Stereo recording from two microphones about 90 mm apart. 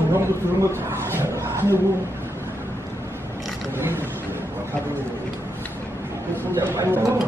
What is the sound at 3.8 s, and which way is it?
Speech, 25° right (ahead or behind).